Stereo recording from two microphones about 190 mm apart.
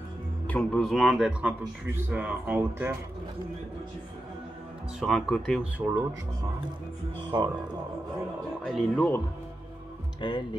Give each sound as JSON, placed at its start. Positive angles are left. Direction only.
{"t": 0.5, "sound": "a man's voice", "side_deg": 5}
{"t": 5.0, "sound": "a man's voice", "side_deg": 0}
{"t": 5.8, "sound": "speech", "side_deg": -10}
{"t": 7.2, "sound": "speech", "side_deg": -20}
{"t": 8.6, "sound": "speech", "side_deg": 5}
{"t": 10.2, "sound": "speech", "side_deg": 25}